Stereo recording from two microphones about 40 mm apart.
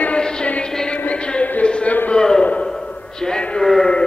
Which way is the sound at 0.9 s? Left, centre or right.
Left.